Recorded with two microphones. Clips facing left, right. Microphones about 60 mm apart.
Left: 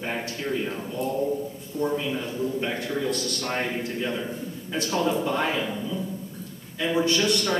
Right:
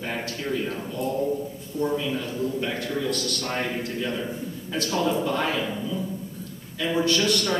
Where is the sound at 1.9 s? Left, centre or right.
Centre.